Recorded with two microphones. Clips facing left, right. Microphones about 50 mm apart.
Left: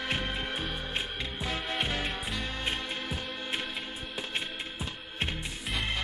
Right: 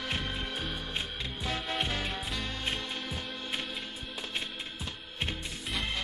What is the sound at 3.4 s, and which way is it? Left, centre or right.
Music, centre.